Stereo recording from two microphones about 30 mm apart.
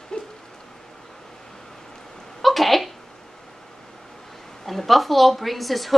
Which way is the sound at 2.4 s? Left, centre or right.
Centre.